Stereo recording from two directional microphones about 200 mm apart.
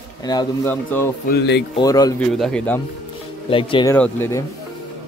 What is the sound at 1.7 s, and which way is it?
Speech, 20° left (ahead or behind).